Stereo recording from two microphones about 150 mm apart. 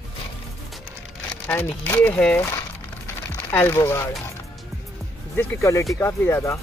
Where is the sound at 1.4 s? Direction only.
10° left (ahead or behind).